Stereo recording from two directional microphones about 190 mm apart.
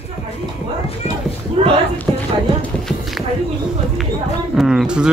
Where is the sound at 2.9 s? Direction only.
Centre (ahead or behind).